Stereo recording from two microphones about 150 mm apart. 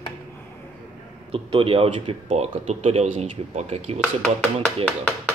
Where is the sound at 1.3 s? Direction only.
40° right (ahead or behind).